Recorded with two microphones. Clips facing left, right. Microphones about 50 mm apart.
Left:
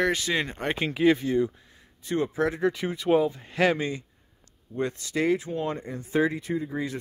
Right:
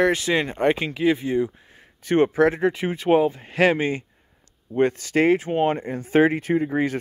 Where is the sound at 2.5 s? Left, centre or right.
Right.